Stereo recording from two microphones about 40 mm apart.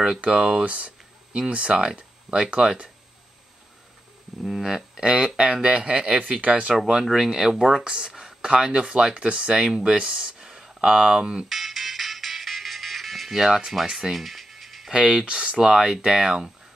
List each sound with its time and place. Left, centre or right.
0.2 s speech: right
0.7 s speech: right
4.4 s speech: centre
5.4 s speech: right
6.7 s speech: centre
11.4 s music: centre
14.9 s speech: centre